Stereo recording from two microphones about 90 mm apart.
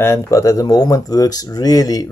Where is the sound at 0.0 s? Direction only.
35° left (ahead or behind).